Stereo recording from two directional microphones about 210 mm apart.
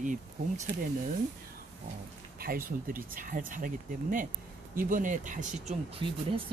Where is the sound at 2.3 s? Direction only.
45° right (ahead or behind); by 6.4 s 30° right (ahead or behind).